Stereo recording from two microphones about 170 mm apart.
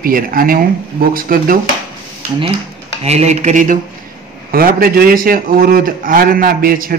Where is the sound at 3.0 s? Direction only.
40° right (ahead or behind).